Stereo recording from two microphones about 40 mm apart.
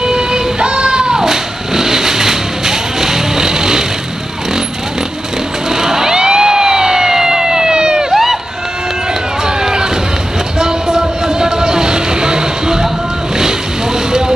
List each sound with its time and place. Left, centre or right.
0.0 s vehicle: centre
5.8 s emergency vehicle: centre
8.1 s run: centre
10.6 s music: centre